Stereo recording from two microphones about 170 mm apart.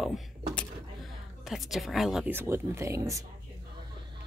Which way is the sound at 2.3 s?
15° right (ahead or behind).